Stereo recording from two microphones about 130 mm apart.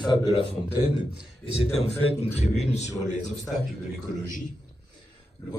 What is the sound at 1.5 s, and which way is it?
A man's voice, 50° left (ahead or behind).